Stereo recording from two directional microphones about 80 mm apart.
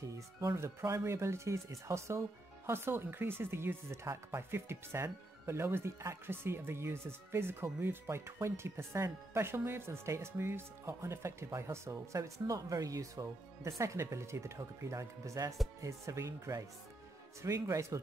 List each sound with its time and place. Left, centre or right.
0.1 s speech: right